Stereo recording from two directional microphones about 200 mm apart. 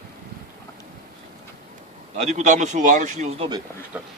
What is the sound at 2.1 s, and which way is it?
A man's voice, 35° right (ahead or behind).